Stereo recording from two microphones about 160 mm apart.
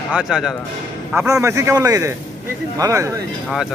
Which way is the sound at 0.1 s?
5° right (ahead or behind).